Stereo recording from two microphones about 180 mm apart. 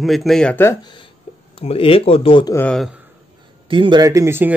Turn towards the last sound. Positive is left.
turn(degrees=-15)  # may be behind; listen again after turning